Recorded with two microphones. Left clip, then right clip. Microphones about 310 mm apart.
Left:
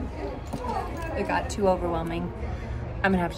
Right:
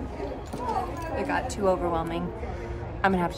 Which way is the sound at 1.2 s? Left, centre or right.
Centre.